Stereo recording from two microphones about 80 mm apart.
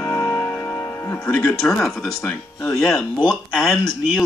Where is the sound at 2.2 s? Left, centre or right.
Left.